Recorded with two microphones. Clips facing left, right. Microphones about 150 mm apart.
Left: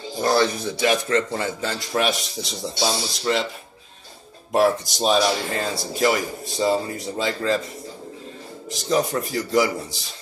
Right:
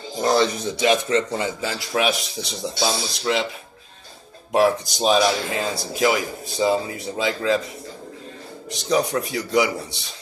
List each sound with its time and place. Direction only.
0.2 s speech: 20° right (ahead or behind)
1.7 s speech: centre (ahead or behind)
4.5 s speech: centre (ahead or behind)
8.6 s speech: centre (ahead or behind)